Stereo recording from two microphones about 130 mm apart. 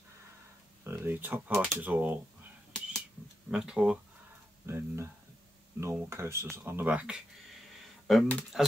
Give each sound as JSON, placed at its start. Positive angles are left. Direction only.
{"t": 0.8, "sound": "speech", "side_deg": -15}
{"t": 3.4, "sound": "speech", "side_deg": -5}
{"t": 4.6, "sound": "speech", "side_deg": -20}
{"t": 8.1, "sound": "speech", "side_deg": 5}